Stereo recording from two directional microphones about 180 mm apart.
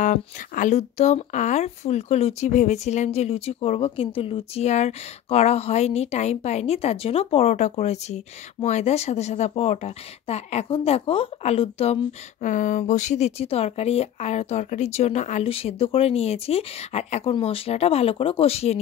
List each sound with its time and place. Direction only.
0.0 s speech: 45° left (ahead or behind)